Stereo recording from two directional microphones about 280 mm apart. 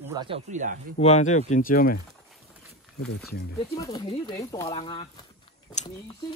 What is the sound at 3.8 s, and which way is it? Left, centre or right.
Speech, centre.